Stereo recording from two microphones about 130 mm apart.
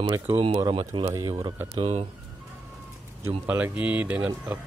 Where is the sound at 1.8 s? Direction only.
50° right (ahead or behind).